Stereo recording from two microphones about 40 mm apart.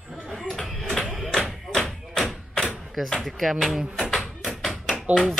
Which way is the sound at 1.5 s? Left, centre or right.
Centre.